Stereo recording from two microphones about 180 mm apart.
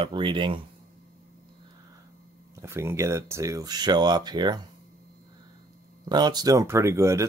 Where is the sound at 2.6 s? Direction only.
15° right (ahead or behind).